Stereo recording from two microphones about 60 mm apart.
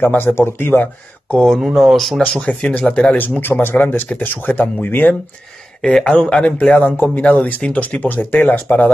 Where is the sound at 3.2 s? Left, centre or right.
Left.